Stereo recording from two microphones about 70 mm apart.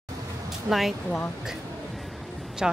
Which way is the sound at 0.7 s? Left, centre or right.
Centre.